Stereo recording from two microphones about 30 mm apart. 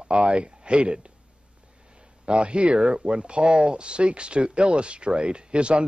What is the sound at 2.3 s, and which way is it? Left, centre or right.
Speech, right.